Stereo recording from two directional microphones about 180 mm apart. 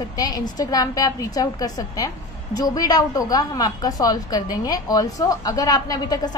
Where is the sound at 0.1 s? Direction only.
20° left (ahead or behind).